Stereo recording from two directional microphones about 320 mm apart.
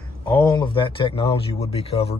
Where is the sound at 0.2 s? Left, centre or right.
Centre.